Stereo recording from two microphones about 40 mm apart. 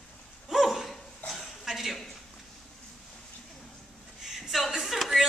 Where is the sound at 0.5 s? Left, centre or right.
Centre.